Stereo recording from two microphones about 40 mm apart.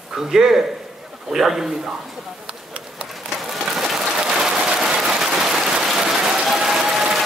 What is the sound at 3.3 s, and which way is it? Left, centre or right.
Train, centre.